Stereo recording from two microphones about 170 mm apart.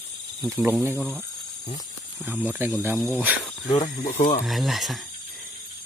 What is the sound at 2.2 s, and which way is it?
Speech, 10° right (ahead or behind).